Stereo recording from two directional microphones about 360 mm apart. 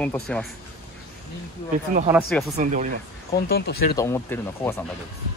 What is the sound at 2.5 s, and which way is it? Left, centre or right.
Speech, right.